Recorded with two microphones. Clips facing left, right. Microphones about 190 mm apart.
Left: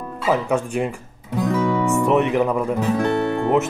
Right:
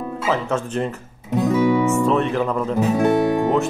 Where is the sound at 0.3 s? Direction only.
15° left (ahead or behind).